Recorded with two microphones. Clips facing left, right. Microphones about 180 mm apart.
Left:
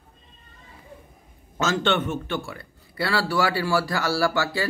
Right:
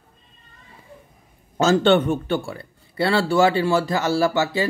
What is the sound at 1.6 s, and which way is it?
A man's voice, 35° right (ahead or behind).